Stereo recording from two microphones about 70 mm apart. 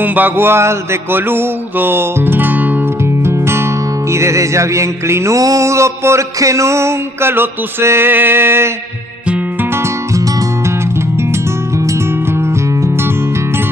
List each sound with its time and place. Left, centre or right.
0.0 s a sound: right
0.5 s music: right
3.3 s music: right